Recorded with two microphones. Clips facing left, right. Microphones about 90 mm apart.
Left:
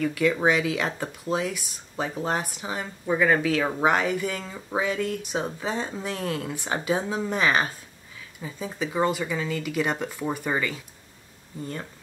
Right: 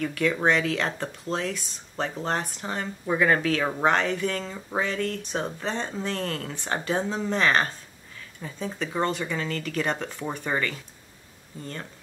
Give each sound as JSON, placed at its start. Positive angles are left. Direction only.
{"t": 0.0, "sound": "speech", "side_deg": 5}